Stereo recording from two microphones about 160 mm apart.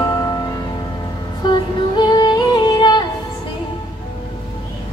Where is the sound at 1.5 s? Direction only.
30° left (ahead or behind).